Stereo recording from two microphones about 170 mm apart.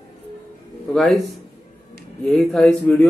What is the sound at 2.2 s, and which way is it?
Speech, 5° left (ahead or behind).